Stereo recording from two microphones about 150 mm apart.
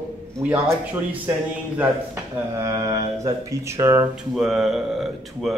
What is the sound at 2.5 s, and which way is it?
Speech, 25° right (ahead or behind).